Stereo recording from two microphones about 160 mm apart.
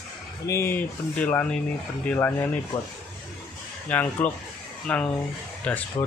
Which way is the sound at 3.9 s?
10° left (ahead or behind).